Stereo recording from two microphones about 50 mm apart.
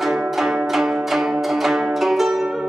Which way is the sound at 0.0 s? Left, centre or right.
Centre.